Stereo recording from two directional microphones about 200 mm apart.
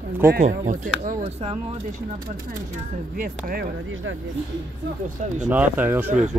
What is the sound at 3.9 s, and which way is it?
Speech, 75° right (ahead or behind).